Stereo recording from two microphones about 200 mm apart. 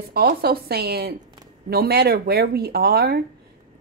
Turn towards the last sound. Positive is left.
turn(degrees=-50)  # may be behind; listen again after turning